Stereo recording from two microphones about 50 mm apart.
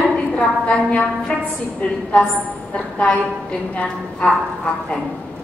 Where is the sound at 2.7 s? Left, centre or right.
Centre.